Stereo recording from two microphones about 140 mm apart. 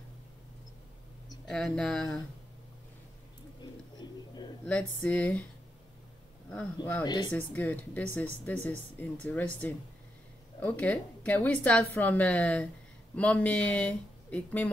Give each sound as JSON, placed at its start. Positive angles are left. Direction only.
{"t": 1.5, "sound": "speech", "side_deg": 5}
{"t": 4.6, "sound": "speech", "side_deg": 10}
{"t": 7.1, "sound": "speech", "side_deg": 30}
{"t": 7.3, "sound": "speech", "side_deg": 10}